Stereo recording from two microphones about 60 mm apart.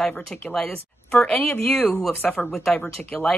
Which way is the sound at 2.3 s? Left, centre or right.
Centre.